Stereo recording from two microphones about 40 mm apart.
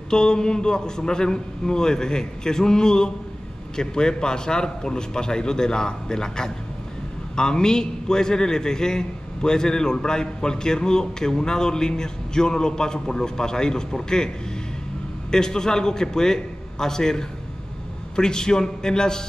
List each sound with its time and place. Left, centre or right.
0.1 s a man's voice: centre
15.3 s a man's voice: centre